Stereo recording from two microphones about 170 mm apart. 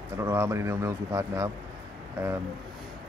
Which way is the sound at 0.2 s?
15° right (ahead or behind).